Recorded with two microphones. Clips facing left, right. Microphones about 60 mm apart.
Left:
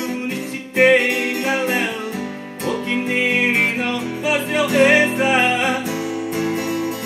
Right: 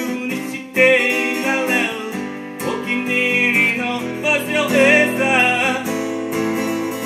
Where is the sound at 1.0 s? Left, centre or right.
Right.